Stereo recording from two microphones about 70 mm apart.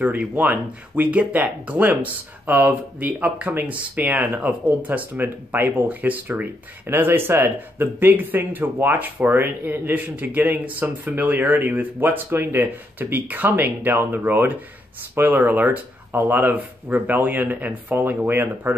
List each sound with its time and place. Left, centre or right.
0.0 s speech: right